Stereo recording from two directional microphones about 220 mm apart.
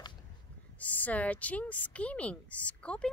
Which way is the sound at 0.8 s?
5° left (ahead or behind).